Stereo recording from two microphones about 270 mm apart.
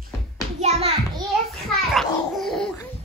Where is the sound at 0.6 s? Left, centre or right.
Right.